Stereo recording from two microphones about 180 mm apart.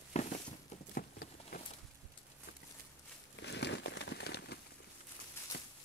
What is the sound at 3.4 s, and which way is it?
Crumpling, 75° left (ahead or behind).